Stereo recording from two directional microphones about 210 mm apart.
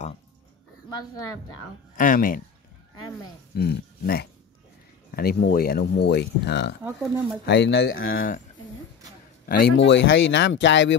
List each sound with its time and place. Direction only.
0.8 s speech: 15° left (ahead or behind)
2.0 s speech: 40° left (ahead or behind)
3.5 s speech: 45° left (ahead or behind)
6.8 s speech: 5° right (ahead or behind)
7.4 s speech: 55° left (ahead or behind)
9.5 s speech: 50° left (ahead or behind)